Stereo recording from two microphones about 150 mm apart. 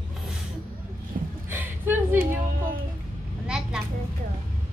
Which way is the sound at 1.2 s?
65° right (ahead or behind).